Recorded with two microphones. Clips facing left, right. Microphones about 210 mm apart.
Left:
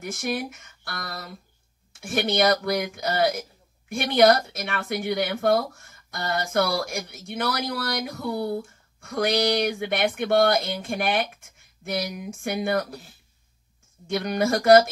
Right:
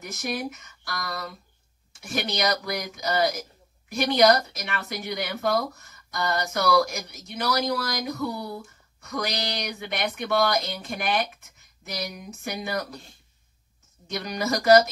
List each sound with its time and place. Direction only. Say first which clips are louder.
0.0 s speech: left 2 dB; 55° left (ahead or behind)
14.0 s speech: left 5 dB; 55° left (ahead or behind)